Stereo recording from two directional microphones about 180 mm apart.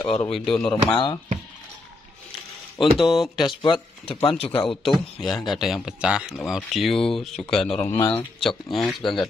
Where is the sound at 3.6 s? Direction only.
25° left (ahead or behind).